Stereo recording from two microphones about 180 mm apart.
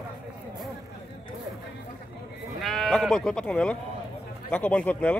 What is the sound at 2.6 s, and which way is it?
Speech, centre (ahead or behind).